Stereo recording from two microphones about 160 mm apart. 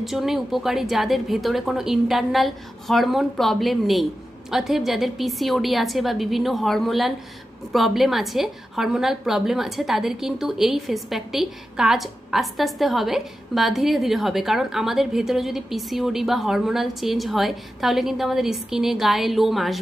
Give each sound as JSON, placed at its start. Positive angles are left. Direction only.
{"t": 0.0, "sound": "a woman's voice", "side_deg": 0}